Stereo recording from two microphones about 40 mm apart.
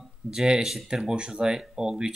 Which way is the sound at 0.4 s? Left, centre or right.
Centre.